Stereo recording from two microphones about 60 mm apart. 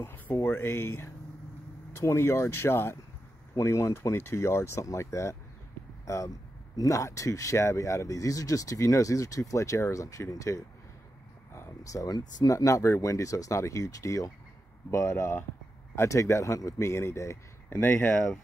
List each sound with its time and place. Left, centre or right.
0.0 s speech: left